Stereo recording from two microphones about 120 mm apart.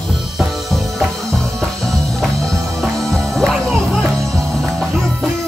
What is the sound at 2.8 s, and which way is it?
Music, centre (ahead or behind).